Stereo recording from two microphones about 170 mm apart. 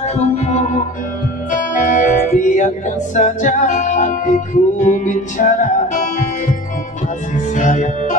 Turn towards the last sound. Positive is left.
turn(degrees=45)  # may be behind; listen again after turning